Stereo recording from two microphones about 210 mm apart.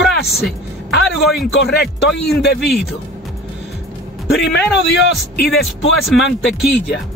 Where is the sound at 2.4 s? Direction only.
50° left (ahead or behind).